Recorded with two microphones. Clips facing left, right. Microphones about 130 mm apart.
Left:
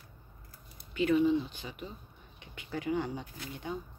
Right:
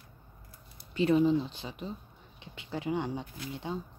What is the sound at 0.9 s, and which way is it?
Speech, 35° right (ahead or behind).